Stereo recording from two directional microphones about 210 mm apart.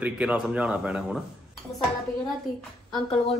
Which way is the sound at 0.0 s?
5° right (ahead or behind).